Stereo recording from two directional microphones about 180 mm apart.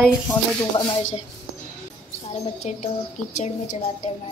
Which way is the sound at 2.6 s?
40° left (ahead or behind).